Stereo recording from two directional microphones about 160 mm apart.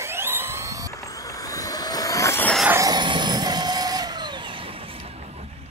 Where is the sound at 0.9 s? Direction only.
20° left (ahead or behind).